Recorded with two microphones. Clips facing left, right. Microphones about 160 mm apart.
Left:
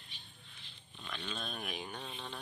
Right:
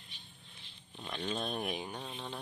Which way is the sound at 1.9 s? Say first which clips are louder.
Right 2 dB; 10° right (ahead or behind).